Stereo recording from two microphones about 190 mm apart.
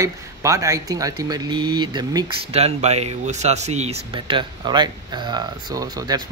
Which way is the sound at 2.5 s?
35° right (ahead or behind).